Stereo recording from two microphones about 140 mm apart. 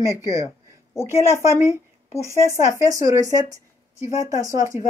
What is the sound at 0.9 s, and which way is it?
Speech, 20° left (ahead or behind).